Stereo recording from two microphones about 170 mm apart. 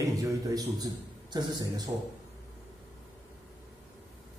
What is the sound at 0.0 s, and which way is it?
A man's voice, 20° right (ahead or behind).